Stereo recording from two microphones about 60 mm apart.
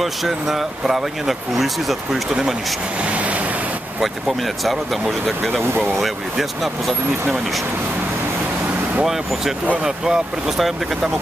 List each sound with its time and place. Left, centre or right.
0.0 s speech: centre
3.0 s vehicle: right
4.0 s speech: centre
5.9 s speech: centre
9.0 s speech: centre